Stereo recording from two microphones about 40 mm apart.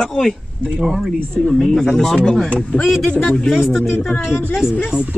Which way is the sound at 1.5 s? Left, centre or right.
Centre.